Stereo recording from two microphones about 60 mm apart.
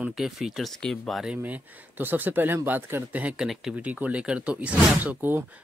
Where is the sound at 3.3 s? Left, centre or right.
Centre.